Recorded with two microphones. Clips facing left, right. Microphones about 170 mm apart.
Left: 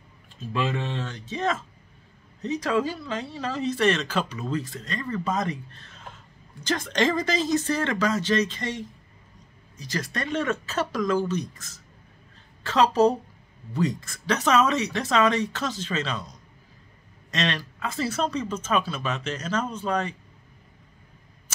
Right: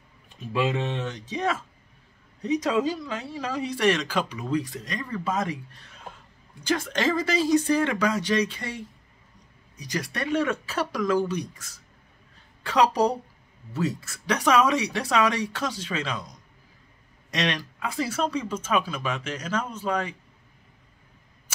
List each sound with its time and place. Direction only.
0.4 s speech: 10° right (ahead or behind)